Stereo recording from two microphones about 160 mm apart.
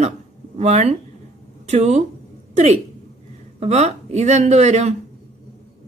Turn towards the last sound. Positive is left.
turn(degrees=-45)  # may be behind; listen again after turning